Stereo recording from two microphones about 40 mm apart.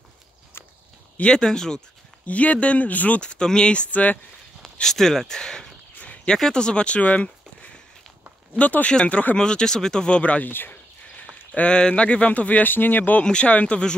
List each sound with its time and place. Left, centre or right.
1.2 s speech: left
2.2 s speech: left
3.2 s speech: left
4.8 s speech: centre
7.0 s a sound: left
8.5 s speech: left
9.4 s speech: centre
10.0 s speech: left
10.4 s speech: left
11.5 s speech: left
12.6 s speech: left
13.2 s speech: left